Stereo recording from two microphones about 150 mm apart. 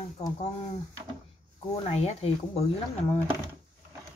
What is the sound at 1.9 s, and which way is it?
Speech, 45° left (ahead or behind).